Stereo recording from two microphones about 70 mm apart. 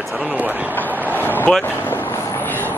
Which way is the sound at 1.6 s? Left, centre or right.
Left.